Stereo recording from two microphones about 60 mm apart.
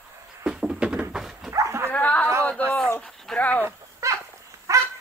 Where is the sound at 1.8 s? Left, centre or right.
Left.